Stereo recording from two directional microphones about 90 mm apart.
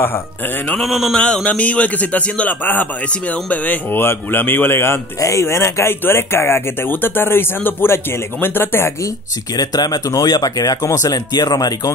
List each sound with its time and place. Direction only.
0.7 s a sound: centre (ahead or behind)
1.2 s a man's voice: 15° left (ahead or behind)
9.6 s speech: 45° left (ahead or behind)